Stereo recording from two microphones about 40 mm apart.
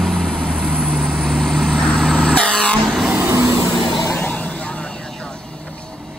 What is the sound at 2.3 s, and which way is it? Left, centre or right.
Vehicle, left.